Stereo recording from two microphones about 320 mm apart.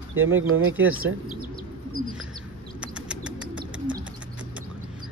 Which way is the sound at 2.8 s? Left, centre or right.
Centre.